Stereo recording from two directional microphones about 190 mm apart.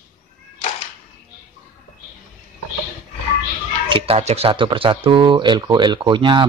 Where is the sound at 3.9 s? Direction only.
30° right (ahead or behind).